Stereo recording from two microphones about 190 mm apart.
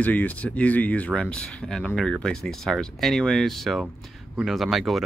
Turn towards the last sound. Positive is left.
turn(degrees=0)  # may be behind; listen again after turning